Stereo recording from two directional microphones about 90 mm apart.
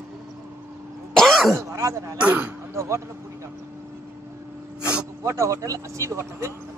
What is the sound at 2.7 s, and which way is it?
Speech, 35° right (ahead or behind).